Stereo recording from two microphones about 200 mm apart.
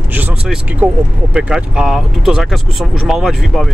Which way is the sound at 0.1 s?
10° right (ahead or behind).